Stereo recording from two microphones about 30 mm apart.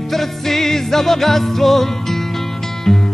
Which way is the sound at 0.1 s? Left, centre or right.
Centre.